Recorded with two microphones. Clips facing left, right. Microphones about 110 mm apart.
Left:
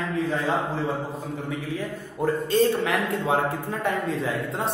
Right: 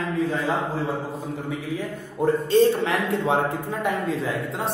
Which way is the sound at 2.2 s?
30° right (ahead or behind).